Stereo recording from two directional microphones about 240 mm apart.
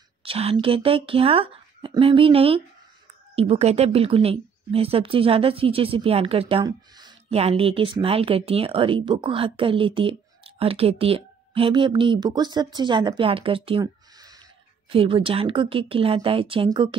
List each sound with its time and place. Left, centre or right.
0.2 s speech: right